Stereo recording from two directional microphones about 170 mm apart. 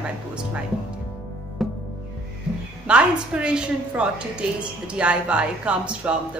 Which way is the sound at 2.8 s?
5° right (ahead or behind).